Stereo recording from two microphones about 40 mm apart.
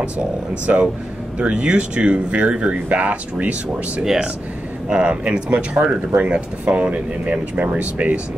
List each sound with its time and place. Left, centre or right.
0.7 s speech: right